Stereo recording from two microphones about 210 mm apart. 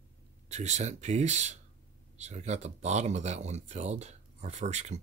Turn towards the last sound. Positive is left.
turn(degrees=-35)  # may be behind; listen again after turning